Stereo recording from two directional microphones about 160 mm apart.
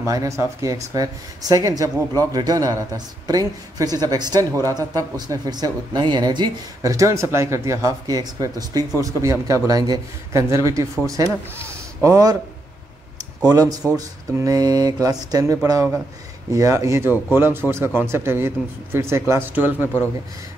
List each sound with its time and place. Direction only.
0.0 s speech: 20° right (ahead or behind)
13.4 s speech: 20° right (ahead or behind)